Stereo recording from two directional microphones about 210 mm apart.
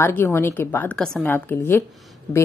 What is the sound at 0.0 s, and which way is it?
A woman's voice, 10° left (ahead or behind).